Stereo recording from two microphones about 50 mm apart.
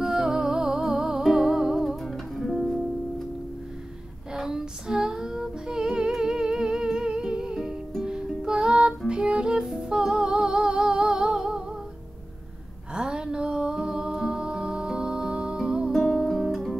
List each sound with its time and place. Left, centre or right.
0.0 s music: centre
4.3 s female singing: centre
8.0 s music: centre
12.9 s music: centre
16.1 s guitar: centre